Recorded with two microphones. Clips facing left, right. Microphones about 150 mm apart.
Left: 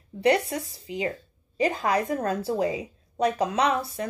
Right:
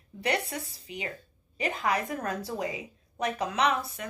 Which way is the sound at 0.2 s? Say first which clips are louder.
Left 8 dB; 25° left (ahead or behind).